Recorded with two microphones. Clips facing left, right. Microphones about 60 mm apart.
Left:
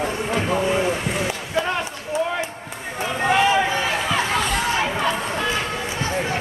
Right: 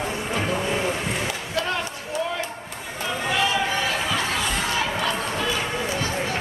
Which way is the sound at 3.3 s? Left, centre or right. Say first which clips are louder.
Left 5 dB; left.